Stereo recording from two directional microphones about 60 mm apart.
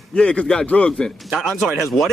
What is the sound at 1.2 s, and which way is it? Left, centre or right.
Speech, centre.